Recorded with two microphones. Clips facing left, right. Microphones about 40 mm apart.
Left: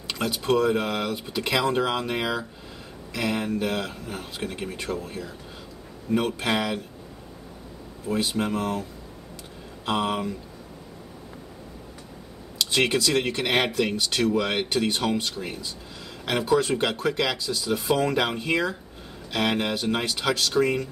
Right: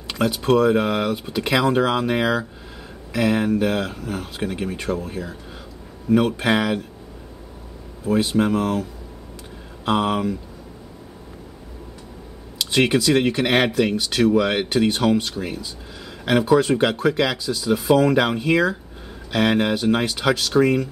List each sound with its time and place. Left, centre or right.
0.1 s speech: centre
8.1 s speech: centre
9.8 s speech: centre
12.5 s speech: centre